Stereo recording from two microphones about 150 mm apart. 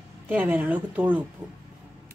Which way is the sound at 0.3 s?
10° right (ahead or behind).